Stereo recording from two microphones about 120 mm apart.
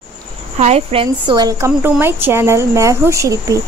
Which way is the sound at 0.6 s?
60° right (ahead or behind).